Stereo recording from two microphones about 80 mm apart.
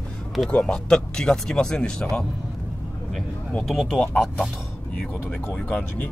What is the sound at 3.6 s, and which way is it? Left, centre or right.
A man's voice, centre.